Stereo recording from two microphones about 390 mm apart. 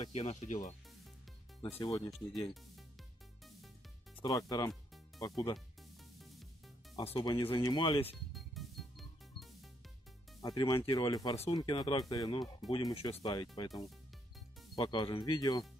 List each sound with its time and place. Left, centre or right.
0.0 s speech: centre
4.2 s speech: centre
7.0 s speech: centre
8.3 s music: centre
10.4 s speech: centre
13.7 s speech: centre
14.8 s speech: centre